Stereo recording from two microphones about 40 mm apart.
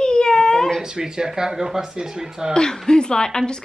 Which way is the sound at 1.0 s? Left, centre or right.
Centre.